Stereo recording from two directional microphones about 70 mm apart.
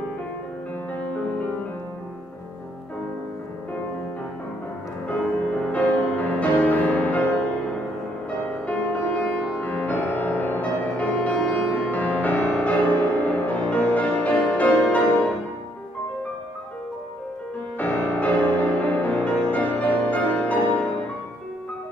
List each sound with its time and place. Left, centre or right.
5.0 s music: left
8.6 s music: centre
17.7 s music: left